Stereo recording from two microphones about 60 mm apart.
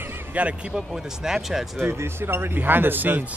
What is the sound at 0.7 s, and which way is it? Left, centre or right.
Speech, centre.